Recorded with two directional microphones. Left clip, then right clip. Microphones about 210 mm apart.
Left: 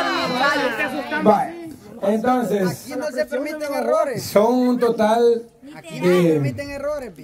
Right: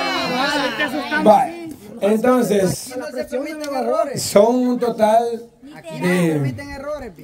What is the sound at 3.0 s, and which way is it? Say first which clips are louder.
Speech: left 2 dB; 30° left (ahead or behind).